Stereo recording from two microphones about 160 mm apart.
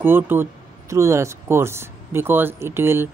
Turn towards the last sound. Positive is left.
turn(degrees=-15)  # may be behind; listen again after turning